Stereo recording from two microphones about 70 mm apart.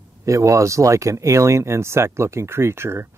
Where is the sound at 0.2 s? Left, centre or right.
Right.